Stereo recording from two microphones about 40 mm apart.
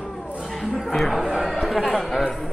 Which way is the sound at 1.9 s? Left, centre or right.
Centre.